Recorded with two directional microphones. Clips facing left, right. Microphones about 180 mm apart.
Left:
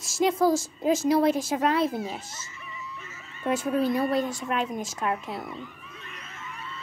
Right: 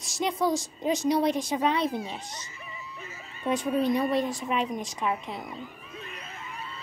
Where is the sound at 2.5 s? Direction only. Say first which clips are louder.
Left 2 dB; 35° right (ahead or behind).